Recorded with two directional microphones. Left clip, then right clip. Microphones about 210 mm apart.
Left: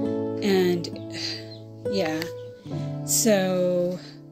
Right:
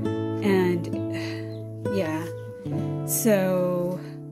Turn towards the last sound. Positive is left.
turn(degrees=-5)  # may be behind; listen again after turning